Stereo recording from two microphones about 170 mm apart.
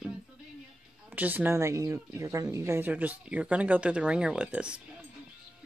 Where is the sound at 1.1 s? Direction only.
10° right (ahead or behind).